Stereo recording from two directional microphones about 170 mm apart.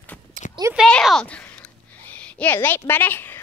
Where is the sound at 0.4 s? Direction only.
50° right (ahead or behind).